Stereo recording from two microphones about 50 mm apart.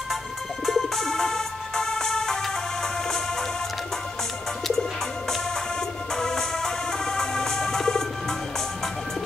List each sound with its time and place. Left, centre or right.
0.7 s music: centre
5.3 s music: centre